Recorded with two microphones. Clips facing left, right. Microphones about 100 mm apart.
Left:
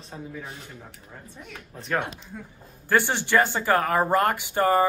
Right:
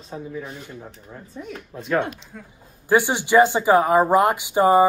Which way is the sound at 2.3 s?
5° left (ahead or behind).